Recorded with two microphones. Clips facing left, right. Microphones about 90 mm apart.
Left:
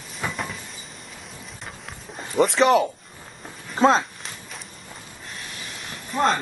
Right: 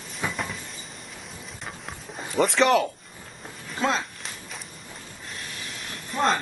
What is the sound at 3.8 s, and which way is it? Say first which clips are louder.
Speech: left 8 dB; 30° left (ahead or behind).